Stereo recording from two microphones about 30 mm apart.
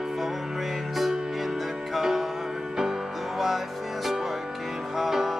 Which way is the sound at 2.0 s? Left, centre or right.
Centre.